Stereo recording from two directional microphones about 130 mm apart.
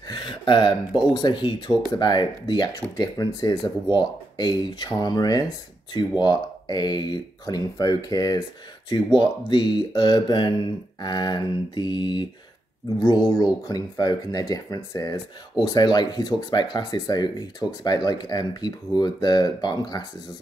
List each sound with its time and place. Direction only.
0.1 s a sound: 35° left (ahead or behind)
1.1 s speech: 35° left (ahead or behind)
13.4 s speech: 30° left (ahead or behind)